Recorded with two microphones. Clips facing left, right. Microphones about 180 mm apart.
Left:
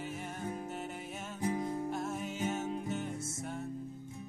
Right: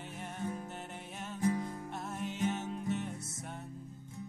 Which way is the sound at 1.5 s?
20° left (ahead or behind).